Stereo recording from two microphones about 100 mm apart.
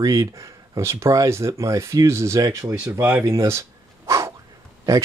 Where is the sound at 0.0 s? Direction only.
35° right (ahead or behind).